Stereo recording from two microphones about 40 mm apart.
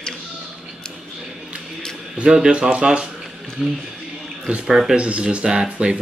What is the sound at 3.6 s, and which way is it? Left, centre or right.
A man's voice, centre.